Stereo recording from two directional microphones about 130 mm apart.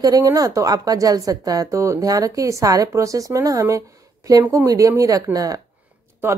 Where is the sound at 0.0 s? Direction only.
30° right (ahead or behind).